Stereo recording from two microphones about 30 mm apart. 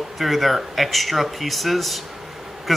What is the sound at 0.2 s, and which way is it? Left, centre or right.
Speech, centre.